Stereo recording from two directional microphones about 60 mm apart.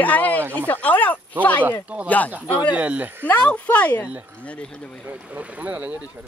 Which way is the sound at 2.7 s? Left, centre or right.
Right.